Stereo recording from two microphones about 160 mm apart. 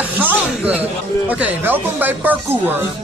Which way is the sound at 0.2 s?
10° right (ahead or behind).